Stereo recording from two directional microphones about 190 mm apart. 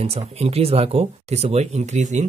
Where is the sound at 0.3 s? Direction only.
35° right (ahead or behind).